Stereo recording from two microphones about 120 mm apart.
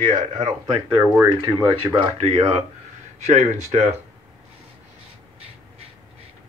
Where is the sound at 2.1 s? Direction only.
55° right (ahead or behind).